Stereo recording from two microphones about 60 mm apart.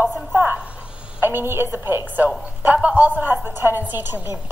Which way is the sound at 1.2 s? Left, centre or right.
Right.